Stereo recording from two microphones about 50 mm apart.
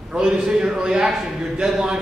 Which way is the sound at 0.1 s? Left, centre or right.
Centre.